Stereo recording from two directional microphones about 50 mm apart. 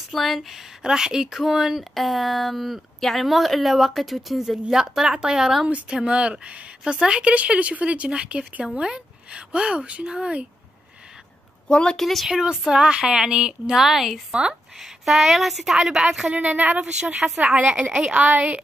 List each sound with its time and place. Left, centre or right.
0.1 s speech: centre
2.0 s a woman's voice: centre
11.6 s a woman's voice: centre
12.0 s speech: centre
12.3 s speech: centre
16.3 s a woman's voice: right